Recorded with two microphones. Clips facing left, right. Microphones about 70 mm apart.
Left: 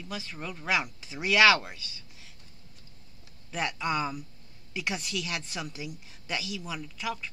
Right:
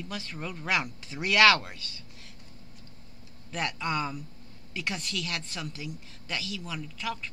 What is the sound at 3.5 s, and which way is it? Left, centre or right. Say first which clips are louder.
A woman's voice: left 1 dB; centre.